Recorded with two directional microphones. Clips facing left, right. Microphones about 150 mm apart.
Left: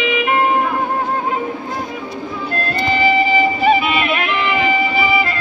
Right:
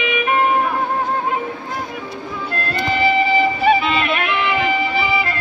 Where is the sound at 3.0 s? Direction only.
20° left (ahead or behind).